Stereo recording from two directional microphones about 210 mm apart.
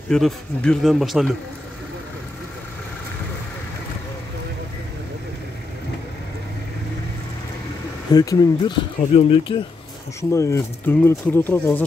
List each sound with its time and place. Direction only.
0.1 s speech: 5° left (ahead or behind)
8.1 s speech: 20° left (ahead or behind)